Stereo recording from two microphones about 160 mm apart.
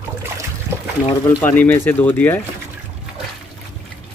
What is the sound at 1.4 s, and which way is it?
Speech, 10° left (ahead or behind).